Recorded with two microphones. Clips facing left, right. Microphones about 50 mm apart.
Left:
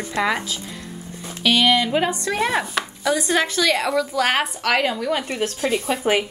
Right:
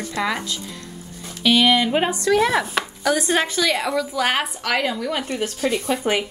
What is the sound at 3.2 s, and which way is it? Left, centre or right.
Speech, right.